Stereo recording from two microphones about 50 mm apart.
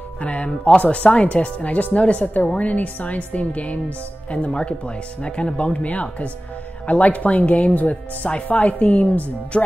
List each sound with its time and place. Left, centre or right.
0.2 s speech: left